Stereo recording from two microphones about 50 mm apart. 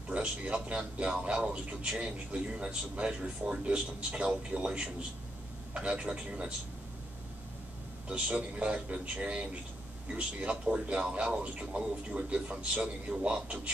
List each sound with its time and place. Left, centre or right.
0.1 s speech: right
8.1 s speech: right